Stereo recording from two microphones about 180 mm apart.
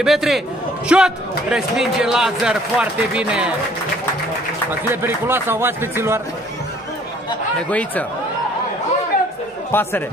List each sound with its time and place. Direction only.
0.0 s a man's voice: centre (ahead or behind)
4.6 s speech: 10° right (ahead or behind)
9.7 s speech: 10° left (ahead or behind)